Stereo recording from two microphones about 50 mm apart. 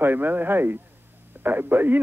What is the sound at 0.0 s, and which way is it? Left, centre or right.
Speech, right.